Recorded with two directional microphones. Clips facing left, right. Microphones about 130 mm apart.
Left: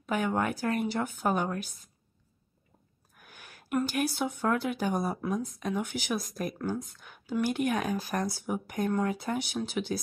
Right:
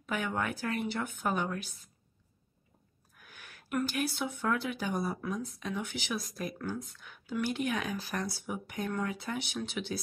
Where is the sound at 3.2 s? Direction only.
40° left (ahead or behind).